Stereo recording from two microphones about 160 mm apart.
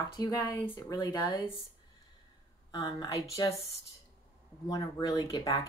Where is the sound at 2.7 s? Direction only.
25° left (ahead or behind).